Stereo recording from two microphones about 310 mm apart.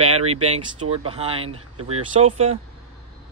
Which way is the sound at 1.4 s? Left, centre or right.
Right.